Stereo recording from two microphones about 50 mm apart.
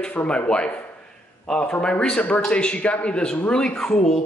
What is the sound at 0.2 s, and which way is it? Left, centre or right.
Speech, left.